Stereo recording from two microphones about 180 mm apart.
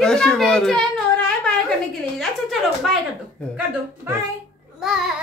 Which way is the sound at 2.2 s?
Centre (ahead or behind).